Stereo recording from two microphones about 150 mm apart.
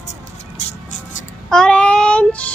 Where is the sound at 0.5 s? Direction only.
55° left (ahead or behind).